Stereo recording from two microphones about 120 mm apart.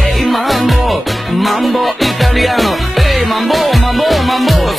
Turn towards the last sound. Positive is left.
turn(degrees=0)  # may be behind; listen again after turning